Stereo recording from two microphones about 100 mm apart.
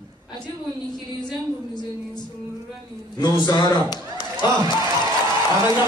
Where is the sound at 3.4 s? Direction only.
45° left (ahead or behind).